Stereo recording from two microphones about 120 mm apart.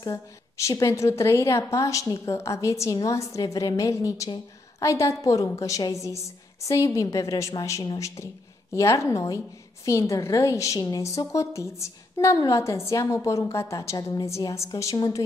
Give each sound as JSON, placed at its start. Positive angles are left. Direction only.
{"t": 0.0, "sound": "a woman's voice", "side_deg": 25}